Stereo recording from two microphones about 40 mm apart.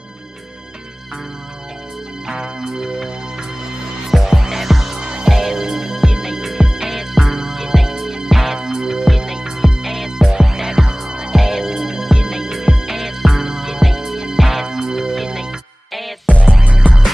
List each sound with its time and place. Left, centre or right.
2.2 s music: centre
4.9 s music: centre